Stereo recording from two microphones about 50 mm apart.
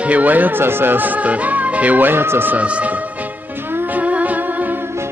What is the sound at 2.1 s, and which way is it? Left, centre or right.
Speech, right.